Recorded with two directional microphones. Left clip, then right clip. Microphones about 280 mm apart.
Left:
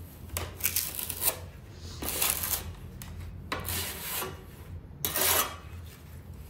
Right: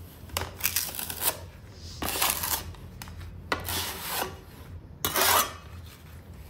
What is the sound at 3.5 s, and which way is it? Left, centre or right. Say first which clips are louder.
Rub: right 4 dB; centre.